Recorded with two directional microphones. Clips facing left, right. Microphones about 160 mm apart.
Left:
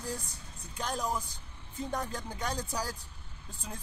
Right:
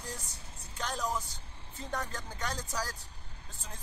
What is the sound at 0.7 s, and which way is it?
Speech, 10° left (ahead or behind).